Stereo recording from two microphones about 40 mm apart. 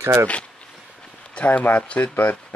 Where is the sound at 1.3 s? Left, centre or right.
Left.